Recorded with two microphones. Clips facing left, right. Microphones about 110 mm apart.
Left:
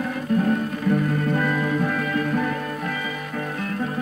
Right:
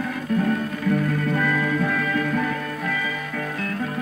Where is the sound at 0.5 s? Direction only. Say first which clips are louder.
Left 1 dB; 25° left (ahead or behind).